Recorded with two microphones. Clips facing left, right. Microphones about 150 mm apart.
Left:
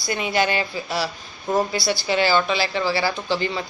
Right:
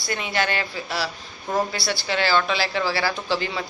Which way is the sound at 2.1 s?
10° left (ahead or behind).